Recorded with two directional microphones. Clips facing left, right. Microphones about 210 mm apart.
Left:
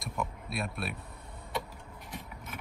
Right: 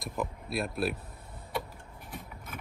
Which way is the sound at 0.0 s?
Centre (ahead or behind).